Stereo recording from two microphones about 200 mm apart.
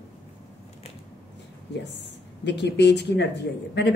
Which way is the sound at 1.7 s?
60° left (ahead or behind).